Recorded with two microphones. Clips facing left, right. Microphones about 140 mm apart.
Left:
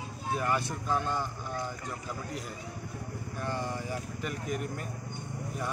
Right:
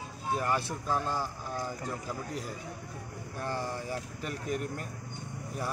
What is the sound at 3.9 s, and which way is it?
Speech, 35° right (ahead or behind).